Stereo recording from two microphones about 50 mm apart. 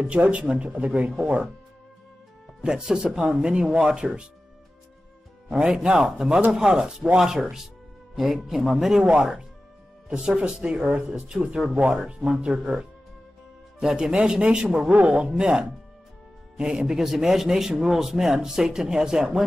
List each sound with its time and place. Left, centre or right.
0.1 s speech: right
2.6 s speech: centre
5.5 s speech: centre
13.7 s speech: centre
14.9 s speech: right; by 19.4 s centre